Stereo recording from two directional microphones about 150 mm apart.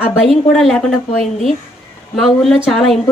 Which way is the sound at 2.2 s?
Centre (ahead or behind).